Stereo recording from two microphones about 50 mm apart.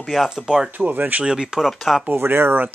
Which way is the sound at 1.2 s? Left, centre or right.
Centre.